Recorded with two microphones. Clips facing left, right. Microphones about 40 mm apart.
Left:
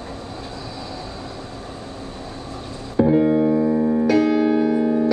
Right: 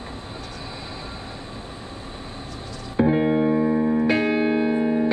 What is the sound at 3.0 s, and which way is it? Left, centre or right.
Music, right.